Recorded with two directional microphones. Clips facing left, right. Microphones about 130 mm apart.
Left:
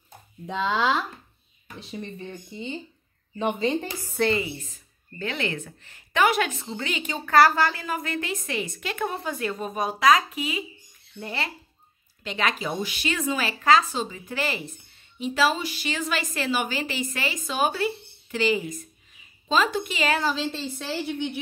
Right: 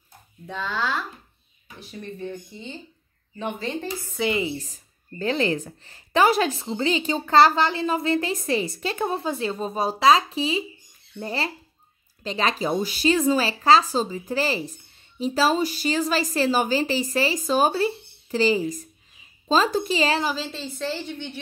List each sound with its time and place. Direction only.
0.5 s speech: 20° left (ahead or behind)
4.2 s a woman's voice: centre (ahead or behind)
4.6 s speech: 35° right (ahead or behind)
20.3 s a woman's voice: centre (ahead or behind)